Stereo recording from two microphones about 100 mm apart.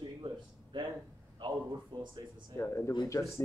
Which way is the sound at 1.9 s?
50° right (ahead or behind).